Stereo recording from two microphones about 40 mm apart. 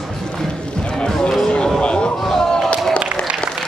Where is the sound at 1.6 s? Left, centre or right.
Left.